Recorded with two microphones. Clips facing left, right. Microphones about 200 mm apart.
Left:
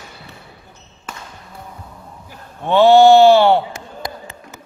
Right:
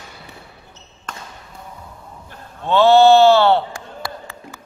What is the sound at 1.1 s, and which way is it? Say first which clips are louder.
Basketball bounce: even; 5° left (ahead or behind).